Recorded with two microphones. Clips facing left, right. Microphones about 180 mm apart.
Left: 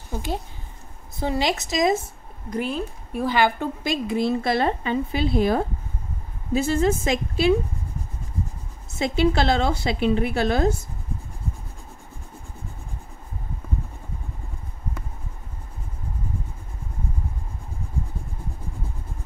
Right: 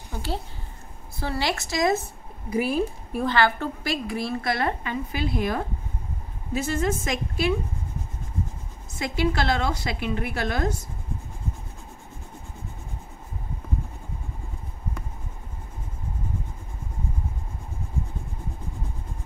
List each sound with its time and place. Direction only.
0.1 s a woman's voice: 15° left (ahead or behind)
2.5 s speech: 10° right (ahead or behind)
3.3 s a woman's voice: 15° left (ahead or behind)
8.9 s a woman's voice: 25° left (ahead or behind)